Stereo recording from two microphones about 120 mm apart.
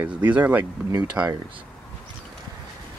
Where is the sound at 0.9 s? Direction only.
30° right (ahead or behind).